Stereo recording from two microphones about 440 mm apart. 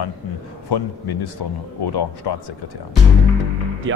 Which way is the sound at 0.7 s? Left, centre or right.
Left.